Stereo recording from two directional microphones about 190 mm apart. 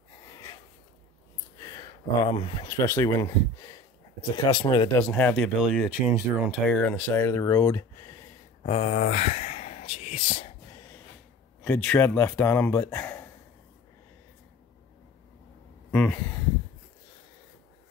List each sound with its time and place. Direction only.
1.6 s a sound: 20° left (ahead or behind)
2.8 s speech: 15° left (ahead or behind)
5.0 s speech: 5° left (ahead or behind)
6.7 s speech: 5° left (ahead or behind)
8.6 s speech: 40° left (ahead or behind)
11.6 s speech: 5° left (ahead or behind)
15.9 s speech: 5° left (ahead or behind)